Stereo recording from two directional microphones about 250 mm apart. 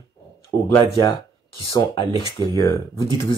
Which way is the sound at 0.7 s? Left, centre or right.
Left.